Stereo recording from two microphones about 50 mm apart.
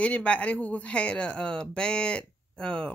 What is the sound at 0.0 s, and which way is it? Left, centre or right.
Speech, left.